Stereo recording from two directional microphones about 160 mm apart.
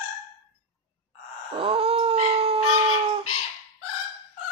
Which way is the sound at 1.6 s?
35° right (ahead or behind).